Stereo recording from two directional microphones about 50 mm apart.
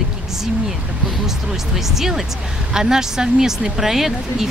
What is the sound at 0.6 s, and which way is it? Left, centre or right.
Speech, centre.